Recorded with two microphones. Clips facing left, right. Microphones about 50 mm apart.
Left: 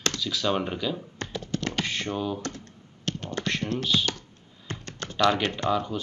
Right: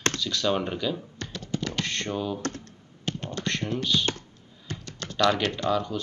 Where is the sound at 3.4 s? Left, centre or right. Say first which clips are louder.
Left 1 dB; centre.